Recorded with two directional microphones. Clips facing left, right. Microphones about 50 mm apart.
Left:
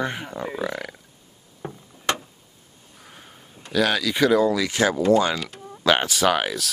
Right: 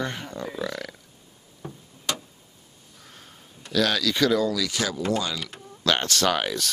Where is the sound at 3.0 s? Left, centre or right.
Centre.